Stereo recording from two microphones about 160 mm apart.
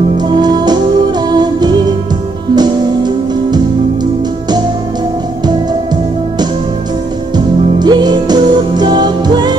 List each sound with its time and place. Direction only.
0.3 s music: 25° right (ahead or behind)
7.3 s music: 25° right (ahead or behind)